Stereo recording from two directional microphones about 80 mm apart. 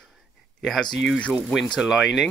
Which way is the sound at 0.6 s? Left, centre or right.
Centre.